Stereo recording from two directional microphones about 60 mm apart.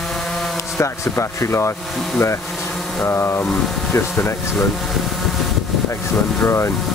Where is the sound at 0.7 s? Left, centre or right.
Left.